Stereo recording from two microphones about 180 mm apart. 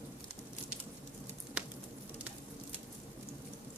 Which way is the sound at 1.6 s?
5° right (ahead or behind).